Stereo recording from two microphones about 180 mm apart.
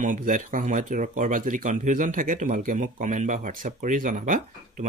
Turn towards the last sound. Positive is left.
turn(degrees=-45)  # may be behind; listen again after turning